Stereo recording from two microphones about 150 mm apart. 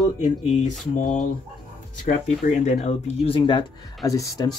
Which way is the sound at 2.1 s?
50° left (ahead or behind).